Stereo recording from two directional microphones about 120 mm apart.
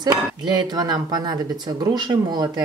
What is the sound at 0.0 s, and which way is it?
Speech, 35° right (ahead or behind).